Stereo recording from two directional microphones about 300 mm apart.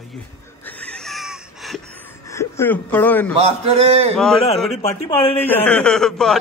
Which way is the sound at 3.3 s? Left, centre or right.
Centre.